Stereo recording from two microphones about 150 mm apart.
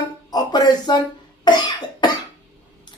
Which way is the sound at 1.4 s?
30° left (ahead or behind).